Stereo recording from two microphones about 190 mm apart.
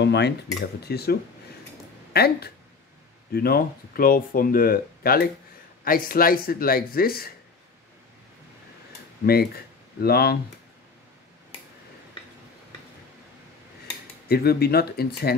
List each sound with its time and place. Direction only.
0.0 s speech: 65° left (ahead or behind)
2.1 s speech: 55° left (ahead or behind)
9.2 s speech: 55° left (ahead or behind)
14.2 s speech: 55° left (ahead or behind)